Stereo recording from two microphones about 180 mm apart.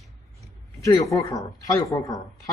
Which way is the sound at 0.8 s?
20° left (ahead or behind).